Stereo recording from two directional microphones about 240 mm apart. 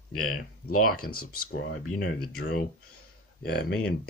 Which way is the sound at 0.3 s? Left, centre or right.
Left.